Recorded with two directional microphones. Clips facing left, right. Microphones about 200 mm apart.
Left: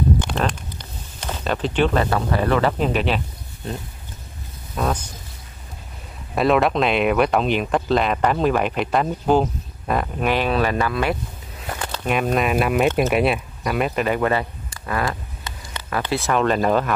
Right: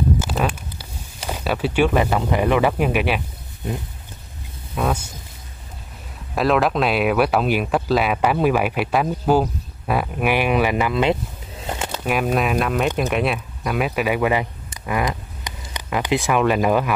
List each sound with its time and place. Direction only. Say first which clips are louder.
0.2 s speech: right 1 dB; 5° right (ahead or behind)
4.7 s speech: right 1 dB; 5° right (ahead or behind)
6.3 s speech: left 1 dB; centre (ahead or behind); by 11.1 s 20° right (ahead or behind)
11.6 s pigeon: right 2 dB; 25° right (ahead or behind)
11.9 s speech: even; 5° right (ahead or behind)